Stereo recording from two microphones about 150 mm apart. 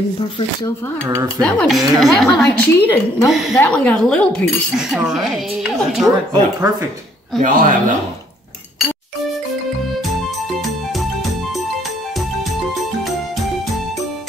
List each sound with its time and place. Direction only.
1.4 s a woman's voice: 5° left (ahead or behind)
2.4 s a woman's voice: 15° left (ahead or behind)
3.3 s a woman's voice: centre (ahead or behind)
4.7 s a woman's voice: 5° right (ahead or behind)
6.0 s speech: 25° right (ahead or behind)
7.3 s speech: 60° right (ahead or behind)